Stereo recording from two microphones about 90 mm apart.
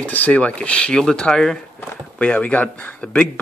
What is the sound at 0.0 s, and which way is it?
Speech, 15° left (ahead or behind).